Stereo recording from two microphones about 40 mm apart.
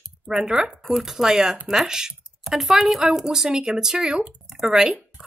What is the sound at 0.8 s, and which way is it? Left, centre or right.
A woman's voice, centre.